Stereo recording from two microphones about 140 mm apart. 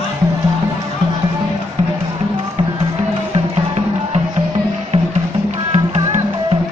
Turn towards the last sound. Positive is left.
turn(degrees=-45)  # may be behind; listen again after turning